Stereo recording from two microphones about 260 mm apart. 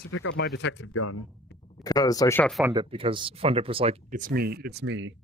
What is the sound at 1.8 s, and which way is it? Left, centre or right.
Speech, centre.